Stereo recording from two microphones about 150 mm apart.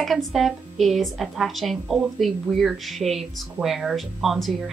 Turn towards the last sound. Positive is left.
turn(degrees=0)  # may be behind; listen again after turning